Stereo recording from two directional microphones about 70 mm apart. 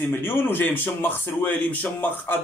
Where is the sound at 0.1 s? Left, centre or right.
Left.